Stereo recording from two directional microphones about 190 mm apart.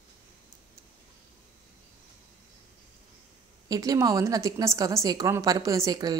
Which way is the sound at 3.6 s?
20° right (ahead or behind).